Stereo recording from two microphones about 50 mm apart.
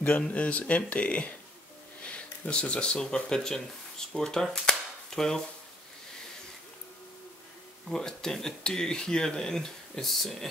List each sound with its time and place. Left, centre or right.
0.3 s speech: left; by 5.4 s centre
7.9 s speech: centre